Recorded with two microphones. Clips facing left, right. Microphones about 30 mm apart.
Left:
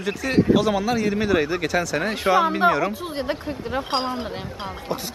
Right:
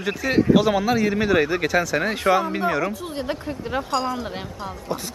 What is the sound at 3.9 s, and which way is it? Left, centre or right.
Speech, left.